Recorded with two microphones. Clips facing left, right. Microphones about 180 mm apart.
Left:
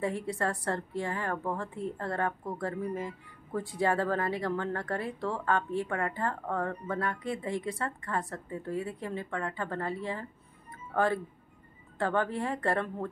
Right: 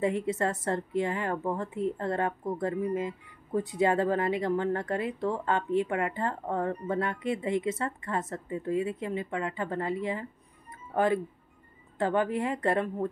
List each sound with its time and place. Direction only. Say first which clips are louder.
0.0 s a woman's voice: right 4 dB; 20° right (ahead or behind)